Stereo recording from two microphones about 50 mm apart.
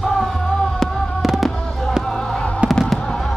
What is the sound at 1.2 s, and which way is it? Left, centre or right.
Fireworks, centre.